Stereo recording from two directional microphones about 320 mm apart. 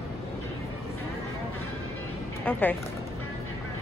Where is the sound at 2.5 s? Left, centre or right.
Centre.